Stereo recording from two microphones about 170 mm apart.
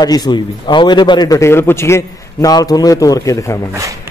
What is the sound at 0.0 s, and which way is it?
A man's voice, 25° left (ahead or behind).